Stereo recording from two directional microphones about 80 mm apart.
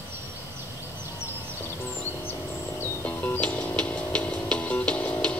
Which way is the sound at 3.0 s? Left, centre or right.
Centre.